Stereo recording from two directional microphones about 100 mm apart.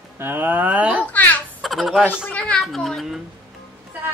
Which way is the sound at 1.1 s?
15° left (ahead or behind).